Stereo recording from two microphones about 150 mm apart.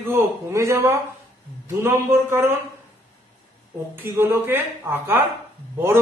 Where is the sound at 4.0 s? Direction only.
15° right (ahead or behind).